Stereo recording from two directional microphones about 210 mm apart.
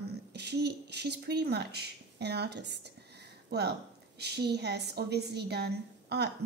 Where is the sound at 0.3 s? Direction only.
50° right (ahead or behind).